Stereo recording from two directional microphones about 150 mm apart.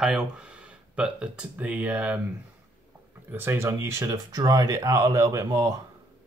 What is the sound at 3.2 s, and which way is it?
Speech, 15° right (ahead or behind).